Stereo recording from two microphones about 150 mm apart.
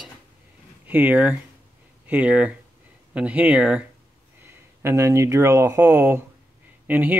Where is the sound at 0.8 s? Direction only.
10° right (ahead or behind).